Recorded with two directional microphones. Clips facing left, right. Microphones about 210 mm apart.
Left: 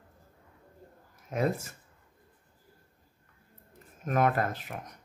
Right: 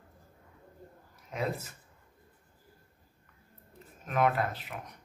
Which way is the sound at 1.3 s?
45° left (ahead or behind).